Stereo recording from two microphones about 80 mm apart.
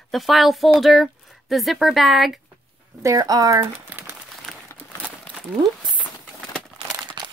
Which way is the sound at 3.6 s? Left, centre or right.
Right.